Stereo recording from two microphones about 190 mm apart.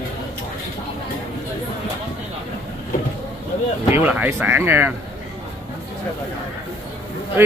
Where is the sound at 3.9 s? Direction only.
10° right (ahead or behind).